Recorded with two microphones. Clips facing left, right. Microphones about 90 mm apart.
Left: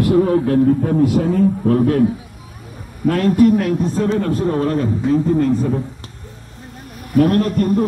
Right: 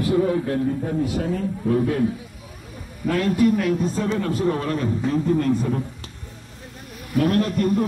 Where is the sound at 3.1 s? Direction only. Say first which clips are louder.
Left 6 dB; 50° left (ahead or behind).